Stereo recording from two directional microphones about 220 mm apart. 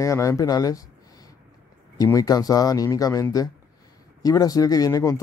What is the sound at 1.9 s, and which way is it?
Speech, 15° left (ahead or behind).